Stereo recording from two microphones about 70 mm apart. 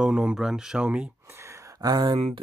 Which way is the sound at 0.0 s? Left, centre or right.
Centre.